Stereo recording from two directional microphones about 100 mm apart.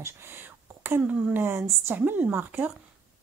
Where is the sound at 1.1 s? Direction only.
10° right (ahead or behind).